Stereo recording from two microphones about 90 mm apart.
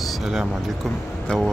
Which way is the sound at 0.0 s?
5° right (ahead or behind).